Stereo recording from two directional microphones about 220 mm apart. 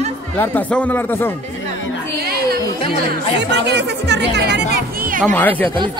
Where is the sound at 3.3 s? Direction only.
50° right (ahead or behind).